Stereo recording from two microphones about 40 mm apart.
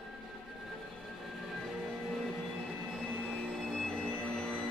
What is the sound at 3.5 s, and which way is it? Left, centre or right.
Train, centre.